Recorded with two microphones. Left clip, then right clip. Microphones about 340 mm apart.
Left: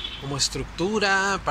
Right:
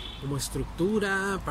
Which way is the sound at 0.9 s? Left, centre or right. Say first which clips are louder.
Left 9 dB; centre.